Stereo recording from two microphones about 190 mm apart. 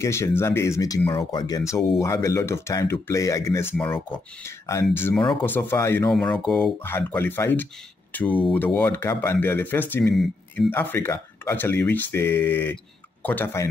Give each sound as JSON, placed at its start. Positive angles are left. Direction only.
{"t": 0.0, "sound": "speech", "side_deg": 15}
{"t": 10.7, "sound": "speech", "side_deg": 10}